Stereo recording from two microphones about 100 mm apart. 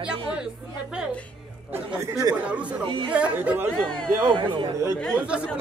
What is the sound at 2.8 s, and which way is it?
Speech, 60° right (ahead or behind).